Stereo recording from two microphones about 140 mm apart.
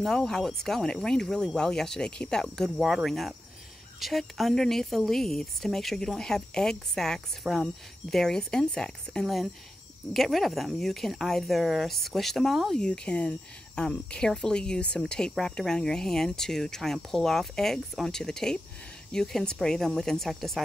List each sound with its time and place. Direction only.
0.0 s speech: 5° left (ahead or behind)